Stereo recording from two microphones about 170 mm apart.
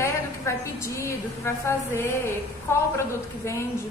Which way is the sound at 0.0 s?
15° left (ahead or behind).